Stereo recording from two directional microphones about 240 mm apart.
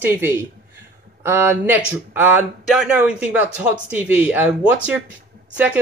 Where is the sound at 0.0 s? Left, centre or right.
Centre.